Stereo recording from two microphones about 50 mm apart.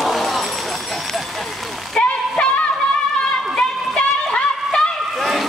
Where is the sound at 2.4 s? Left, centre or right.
Left.